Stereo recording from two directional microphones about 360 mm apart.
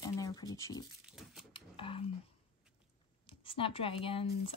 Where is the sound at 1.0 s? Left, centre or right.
Centre.